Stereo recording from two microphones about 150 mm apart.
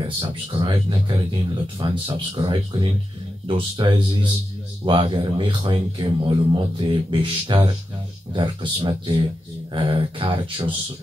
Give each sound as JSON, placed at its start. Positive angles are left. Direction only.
{"t": 0.0, "sound": "speech", "side_deg": -35}